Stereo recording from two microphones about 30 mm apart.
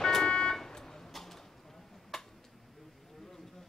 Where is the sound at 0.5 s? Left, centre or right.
Centre.